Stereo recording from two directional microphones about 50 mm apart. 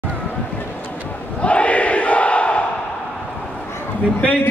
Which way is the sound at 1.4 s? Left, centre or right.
Left.